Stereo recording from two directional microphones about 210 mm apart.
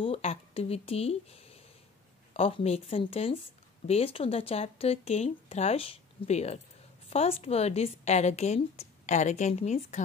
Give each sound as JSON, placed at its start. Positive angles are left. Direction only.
{"t": 0.0, "sound": "a woman's voice", "side_deg": 30}